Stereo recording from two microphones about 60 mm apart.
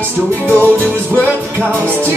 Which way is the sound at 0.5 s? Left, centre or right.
Right.